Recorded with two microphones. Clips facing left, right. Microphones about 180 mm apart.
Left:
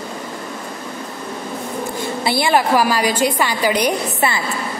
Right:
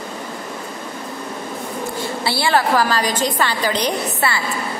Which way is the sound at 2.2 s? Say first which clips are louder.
Left 2 dB; 20° left (ahead or behind).